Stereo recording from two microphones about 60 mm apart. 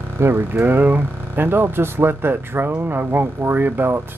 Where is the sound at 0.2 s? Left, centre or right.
Right.